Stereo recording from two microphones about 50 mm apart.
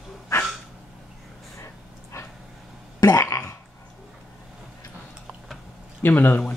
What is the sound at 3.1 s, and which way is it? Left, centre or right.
Throat clearing, left.